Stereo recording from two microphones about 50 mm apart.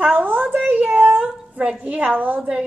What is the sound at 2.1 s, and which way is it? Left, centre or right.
Speech, right.